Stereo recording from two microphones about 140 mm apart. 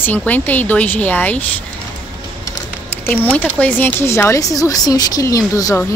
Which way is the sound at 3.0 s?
15° left (ahead or behind).